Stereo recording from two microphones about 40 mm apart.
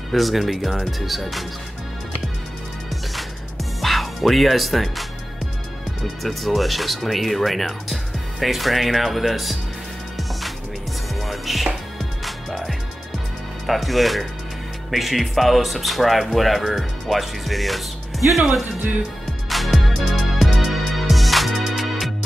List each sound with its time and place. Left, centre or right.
0.1 s speech: centre
3.8 s speech: centre
6.2 s speech: centre
11.1 s music: centre
13.7 s speech: centre
18.2 s speech: right
19.5 s music: centre